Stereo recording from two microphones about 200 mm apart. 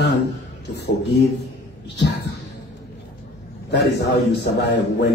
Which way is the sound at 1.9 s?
60° left (ahead or behind).